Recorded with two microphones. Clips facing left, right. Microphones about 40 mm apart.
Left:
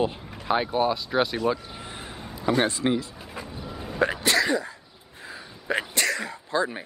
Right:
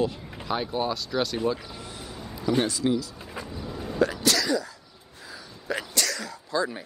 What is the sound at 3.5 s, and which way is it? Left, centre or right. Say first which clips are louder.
Vehicle: right 1 dB; centre.